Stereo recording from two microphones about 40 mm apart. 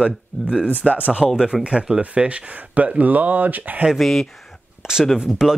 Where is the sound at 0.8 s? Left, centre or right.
Centre.